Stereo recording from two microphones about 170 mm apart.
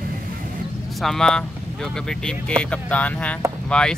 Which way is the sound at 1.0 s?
Centre (ahead or behind).